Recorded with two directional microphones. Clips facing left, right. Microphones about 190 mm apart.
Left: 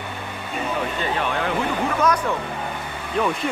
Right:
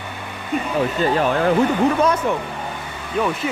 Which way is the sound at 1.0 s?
40° right (ahead or behind).